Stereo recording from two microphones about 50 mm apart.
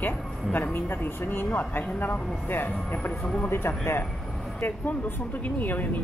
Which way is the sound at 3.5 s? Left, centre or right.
Left.